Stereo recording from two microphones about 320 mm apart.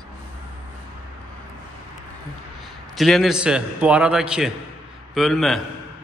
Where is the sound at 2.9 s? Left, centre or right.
Centre.